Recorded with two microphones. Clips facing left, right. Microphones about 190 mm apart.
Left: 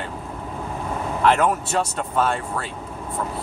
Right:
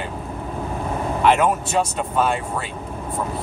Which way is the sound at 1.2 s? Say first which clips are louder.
Right 1 dB; 5° right (ahead or behind).